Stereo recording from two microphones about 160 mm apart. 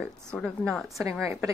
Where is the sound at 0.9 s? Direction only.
20° right (ahead or behind).